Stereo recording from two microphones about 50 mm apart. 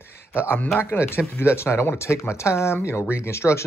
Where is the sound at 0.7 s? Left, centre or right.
Left.